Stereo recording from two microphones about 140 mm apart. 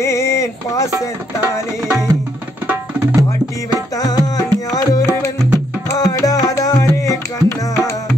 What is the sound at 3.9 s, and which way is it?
Music, 25° left (ahead or behind).